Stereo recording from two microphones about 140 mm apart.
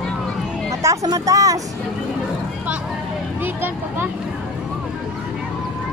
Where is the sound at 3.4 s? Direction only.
15° right (ahead or behind).